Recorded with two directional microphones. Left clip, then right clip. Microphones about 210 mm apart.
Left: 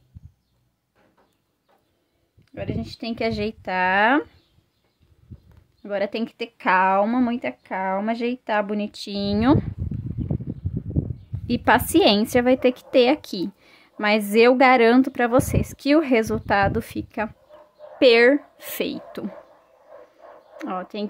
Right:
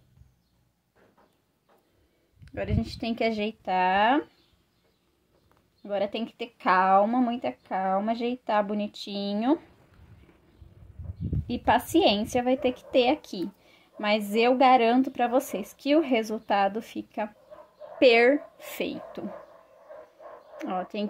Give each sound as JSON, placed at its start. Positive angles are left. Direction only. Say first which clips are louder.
{"t": 2.4, "sound": "speech", "louder": "left 1 dB", "side_deg": -10}
{"t": 3.3, "sound": "a woman's voice", "louder": "left 3 dB", "side_deg": 20}
{"t": 5.8, "sound": "a woman's voice", "louder": "left 4 dB", "side_deg": 25}
{"t": 11.4, "sound": "a woman's voice", "louder": "left 5 dB", "side_deg": 30}
{"t": 20.5, "sound": "speech", "louder": "left 2 dB", "side_deg": 15}